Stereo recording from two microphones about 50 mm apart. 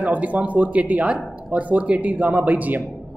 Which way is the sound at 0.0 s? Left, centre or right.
Right.